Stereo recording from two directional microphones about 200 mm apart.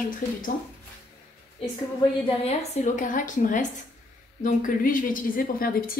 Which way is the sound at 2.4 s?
35° left (ahead or behind).